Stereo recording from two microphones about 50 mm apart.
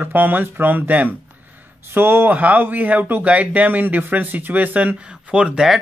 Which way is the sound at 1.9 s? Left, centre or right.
Right.